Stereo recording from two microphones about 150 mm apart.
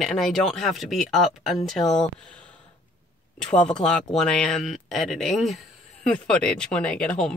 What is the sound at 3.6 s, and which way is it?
Speech, 5° left (ahead or behind).